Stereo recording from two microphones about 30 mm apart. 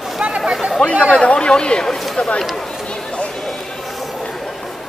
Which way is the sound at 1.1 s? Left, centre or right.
Left.